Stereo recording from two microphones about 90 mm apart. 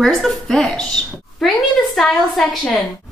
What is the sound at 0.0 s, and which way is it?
A woman's voice, centre (ahead or behind).